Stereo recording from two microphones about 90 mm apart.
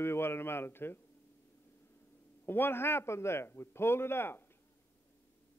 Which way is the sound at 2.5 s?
25° left (ahead or behind).